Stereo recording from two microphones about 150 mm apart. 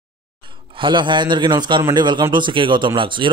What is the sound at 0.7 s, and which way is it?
Speech, 35° right (ahead or behind).